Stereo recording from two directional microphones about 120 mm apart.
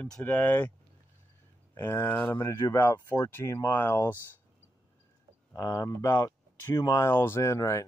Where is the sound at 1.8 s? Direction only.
15° left (ahead or behind).